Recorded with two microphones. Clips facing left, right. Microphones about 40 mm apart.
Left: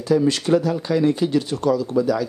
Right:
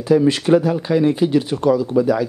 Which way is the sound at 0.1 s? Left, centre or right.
Right.